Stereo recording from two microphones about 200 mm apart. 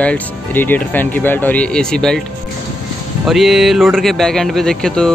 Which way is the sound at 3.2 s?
Centre (ahead or behind).